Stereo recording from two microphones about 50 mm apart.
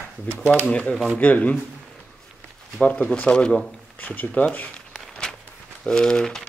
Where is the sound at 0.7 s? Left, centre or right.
Left.